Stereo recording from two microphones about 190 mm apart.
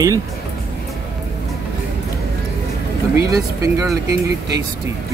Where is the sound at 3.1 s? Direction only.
15° right (ahead or behind).